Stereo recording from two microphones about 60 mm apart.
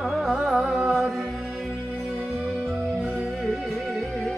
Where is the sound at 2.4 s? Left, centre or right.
Centre.